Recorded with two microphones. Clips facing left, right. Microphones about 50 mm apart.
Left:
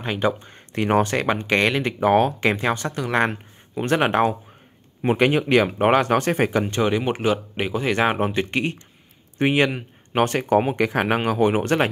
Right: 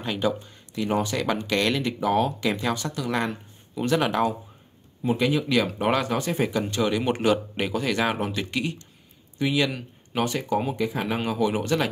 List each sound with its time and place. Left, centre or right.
0.0 s speech: left
1.2 s speech: left
6.6 s speech: left
7.1 s speech: centre
7.9 s speech: left
10.1 s speech: left